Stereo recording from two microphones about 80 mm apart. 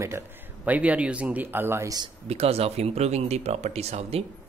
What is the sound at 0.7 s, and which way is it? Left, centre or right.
Speech, centre.